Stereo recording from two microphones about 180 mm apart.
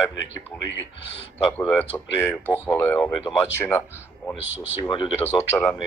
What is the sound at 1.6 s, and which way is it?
Speech, 10° left (ahead or behind).